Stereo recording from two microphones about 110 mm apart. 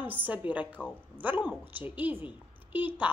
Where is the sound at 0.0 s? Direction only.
15° right (ahead or behind).